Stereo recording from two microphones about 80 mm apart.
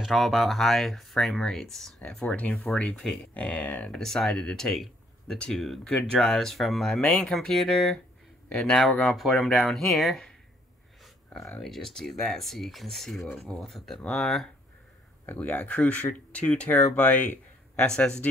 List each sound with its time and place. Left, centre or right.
0.0 s speech: centre
3.9 s speech: centre
9.1 s speech: centre
11.6 s speech: centre
15.2 s speech: left